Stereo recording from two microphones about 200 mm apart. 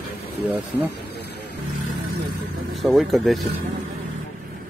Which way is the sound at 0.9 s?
55° left (ahead or behind).